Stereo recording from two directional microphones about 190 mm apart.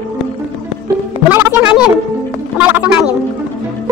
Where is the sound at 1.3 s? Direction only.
10° right (ahead or behind).